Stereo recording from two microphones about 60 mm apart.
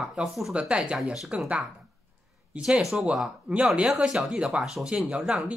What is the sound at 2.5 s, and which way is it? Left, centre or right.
Speech, right.